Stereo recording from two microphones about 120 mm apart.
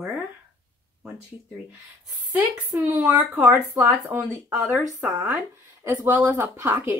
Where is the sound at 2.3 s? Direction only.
15° right (ahead or behind).